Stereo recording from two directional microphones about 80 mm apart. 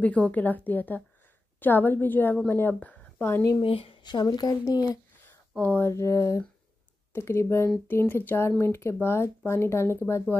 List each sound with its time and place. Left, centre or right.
0.0 s a woman's voice: centre
2.8 s a sound: centre
3.9 s speech: left
5.6 s a woman's voice: left
5.9 s a woman's voice: left